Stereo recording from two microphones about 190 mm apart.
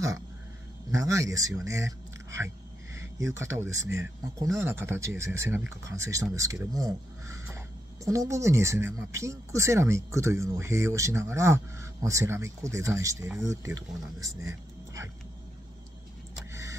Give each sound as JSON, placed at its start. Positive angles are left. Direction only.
{"t": 0.9, "sound": "speech", "side_deg": -15}